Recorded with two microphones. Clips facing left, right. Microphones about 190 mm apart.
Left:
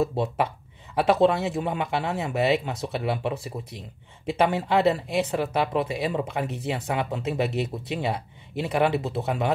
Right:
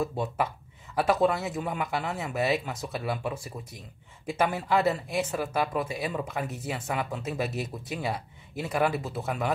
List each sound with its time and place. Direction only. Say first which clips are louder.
0.9 s speech: left 4 dB; 25° left (ahead or behind)
5.0 s speech: left 4 dB; 65° left (ahead or behind)
5.3 s speech: left 4 dB; 20° left (ahead or behind)